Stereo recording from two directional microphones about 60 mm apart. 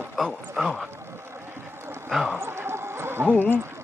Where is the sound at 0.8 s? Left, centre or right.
Right.